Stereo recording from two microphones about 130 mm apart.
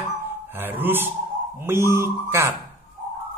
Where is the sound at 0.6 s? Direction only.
15° right (ahead or behind).